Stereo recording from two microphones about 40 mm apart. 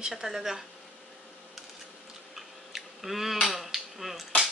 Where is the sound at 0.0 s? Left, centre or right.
Centre.